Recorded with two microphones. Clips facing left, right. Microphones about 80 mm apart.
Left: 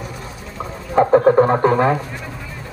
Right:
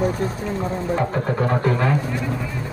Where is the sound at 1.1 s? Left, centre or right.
Left.